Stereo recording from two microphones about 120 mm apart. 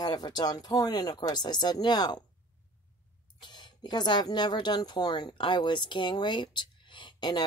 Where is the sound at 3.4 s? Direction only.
40° left (ahead or behind).